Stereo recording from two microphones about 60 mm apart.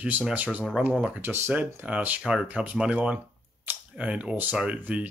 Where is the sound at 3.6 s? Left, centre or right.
Right.